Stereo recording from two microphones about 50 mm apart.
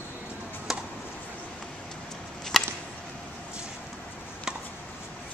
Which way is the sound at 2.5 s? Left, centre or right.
Centre.